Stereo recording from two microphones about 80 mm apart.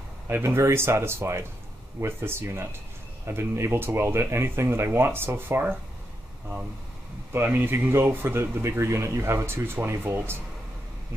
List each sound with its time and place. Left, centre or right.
0.3 s speech: right
7.3 s speech: right